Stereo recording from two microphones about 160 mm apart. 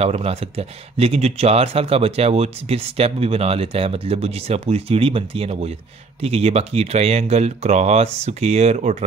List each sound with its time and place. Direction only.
0.0 s speech: 40° right (ahead or behind)